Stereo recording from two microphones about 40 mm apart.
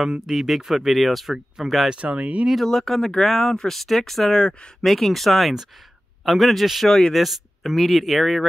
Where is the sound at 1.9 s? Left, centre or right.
Right.